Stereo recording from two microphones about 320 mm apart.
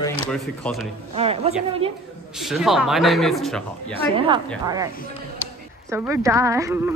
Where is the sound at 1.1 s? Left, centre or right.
Centre.